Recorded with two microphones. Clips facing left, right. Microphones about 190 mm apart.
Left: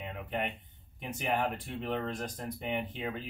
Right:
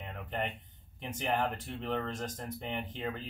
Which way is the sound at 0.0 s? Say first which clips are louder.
Left 1 dB; 10° left (ahead or behind).